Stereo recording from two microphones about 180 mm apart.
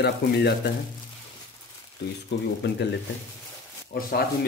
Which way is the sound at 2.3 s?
70° left (ahead or behind).